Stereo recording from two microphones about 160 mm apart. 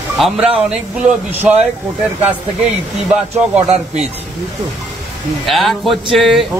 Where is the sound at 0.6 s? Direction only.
5° right (ahead or behind).